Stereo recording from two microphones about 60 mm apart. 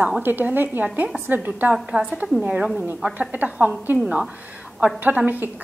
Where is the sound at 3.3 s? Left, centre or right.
Right.